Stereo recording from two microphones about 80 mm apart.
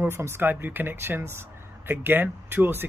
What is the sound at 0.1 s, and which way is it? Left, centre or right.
Speech, right.